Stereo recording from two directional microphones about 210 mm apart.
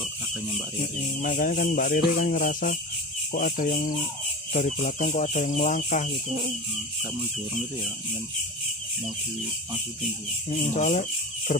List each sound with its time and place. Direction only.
1.2 s speech: 40° left (ahead or behind)
10.5 s speech: 35° left (ahead or behind)